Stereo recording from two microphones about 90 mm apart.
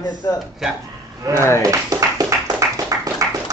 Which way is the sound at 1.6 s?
35° right (ahead or behind).